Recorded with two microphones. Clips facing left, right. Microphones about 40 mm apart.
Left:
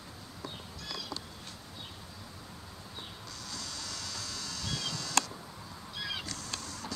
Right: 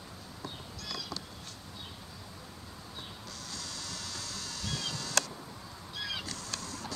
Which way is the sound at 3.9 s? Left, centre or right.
Centre.